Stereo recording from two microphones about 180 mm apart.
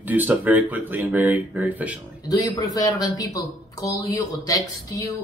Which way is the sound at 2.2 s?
20° left (ahead or behind).